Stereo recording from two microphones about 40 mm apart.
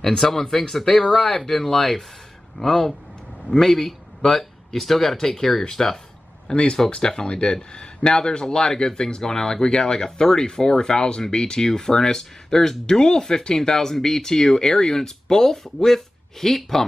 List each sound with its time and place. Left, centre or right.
0.0 s a man's voice: centre
6.5 s speech: left; by 16.8 s centre